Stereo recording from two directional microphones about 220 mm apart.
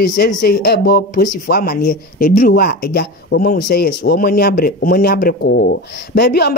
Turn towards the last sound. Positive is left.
turn(degrees=45)  # may be behind; listen again after turning